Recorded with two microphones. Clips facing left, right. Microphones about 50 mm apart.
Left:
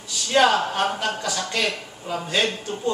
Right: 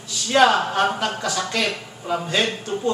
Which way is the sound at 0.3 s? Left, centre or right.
Centre.